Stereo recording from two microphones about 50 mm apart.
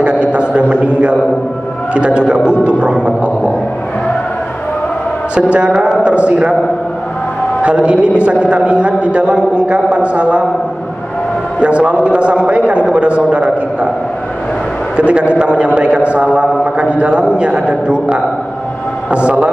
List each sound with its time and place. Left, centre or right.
0.0 s a sound: right
2.0 s a man's voice: right
5.3 s a man's voice: right
7.6 s a man's voice: right
11.6 s a man's voice: right
15.0 s a man's voice: right